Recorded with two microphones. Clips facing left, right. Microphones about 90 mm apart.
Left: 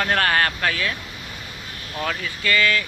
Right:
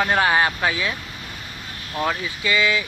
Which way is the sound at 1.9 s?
15° right (ahead or behind).